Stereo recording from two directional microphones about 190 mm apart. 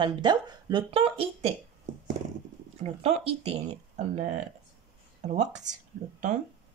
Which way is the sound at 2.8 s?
35° right (ahead or behind).